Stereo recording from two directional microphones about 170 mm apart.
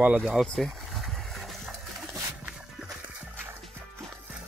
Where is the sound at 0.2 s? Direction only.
Centre (ahead or behind).